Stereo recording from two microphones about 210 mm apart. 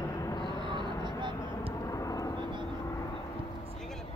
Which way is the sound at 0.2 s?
20° left (ahead or behind).